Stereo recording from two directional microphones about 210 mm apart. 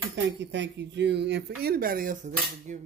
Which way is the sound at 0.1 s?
55° right (ahead or behind).